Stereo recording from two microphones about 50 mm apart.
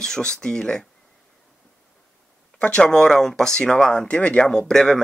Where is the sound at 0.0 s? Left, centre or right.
Centre.